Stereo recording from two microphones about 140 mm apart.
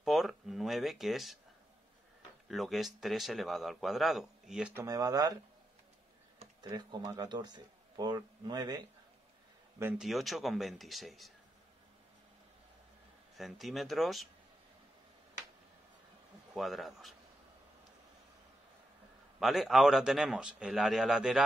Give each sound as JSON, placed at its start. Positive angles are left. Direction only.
{"t": 0.0, "sound": "a sound", "side_deg": 0}
{"t": 2.4, "sound": "a man's voice", "side_deg": 0}
{"t": 4.7, "sound": "speech", "side_deg": -25}
{"t": 6.6, "sound": "speech", "side_deg": -30}
{"t": 9.9, "sound": "a man's voice", "side_deg": 0}
{"t": 13.4, "sound": "a man's voice", "side_deg": 0}
{"t": 16.5, "sound": "a man's voice", "side_deg": 0}
{"t": 19.4, "sound": "a man's voice", "side_deg": 0}